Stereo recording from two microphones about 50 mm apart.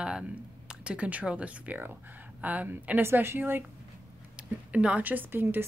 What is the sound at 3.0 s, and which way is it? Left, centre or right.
Speech, right.